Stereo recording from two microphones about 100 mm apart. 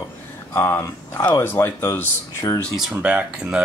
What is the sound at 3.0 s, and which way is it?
Speech, 15° right (ahead or behind).